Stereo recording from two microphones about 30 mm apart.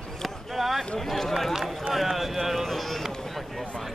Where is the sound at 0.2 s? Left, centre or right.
Centre.